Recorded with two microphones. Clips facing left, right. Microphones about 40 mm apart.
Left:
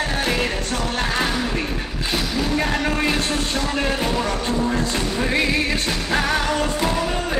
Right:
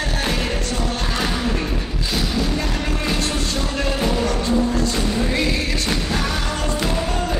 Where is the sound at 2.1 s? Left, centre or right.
Left.